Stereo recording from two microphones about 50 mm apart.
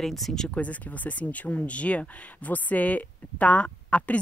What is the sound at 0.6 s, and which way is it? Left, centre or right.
Speech, left.